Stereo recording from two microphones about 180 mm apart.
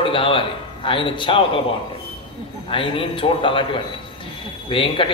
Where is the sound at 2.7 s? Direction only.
30° left (ahead or behind).